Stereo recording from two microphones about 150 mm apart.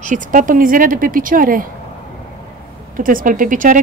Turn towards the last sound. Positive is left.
turn(degrees=-65)  # may be behind; listen again after turning